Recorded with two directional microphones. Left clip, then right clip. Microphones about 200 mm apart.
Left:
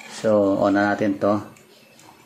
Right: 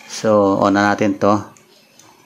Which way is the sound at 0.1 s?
30° right (ahead or behind).